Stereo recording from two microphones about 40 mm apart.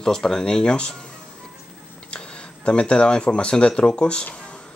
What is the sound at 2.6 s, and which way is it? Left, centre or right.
Speech, left.